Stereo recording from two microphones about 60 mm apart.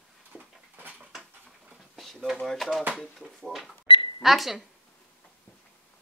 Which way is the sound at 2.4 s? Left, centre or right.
Centre.